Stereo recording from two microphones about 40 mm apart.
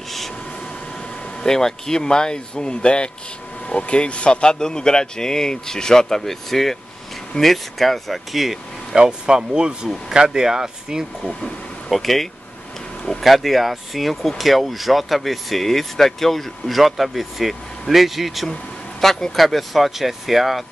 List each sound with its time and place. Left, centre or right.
1.4 s speech: centre
8.9 s speech: right
11.9 s speech: centre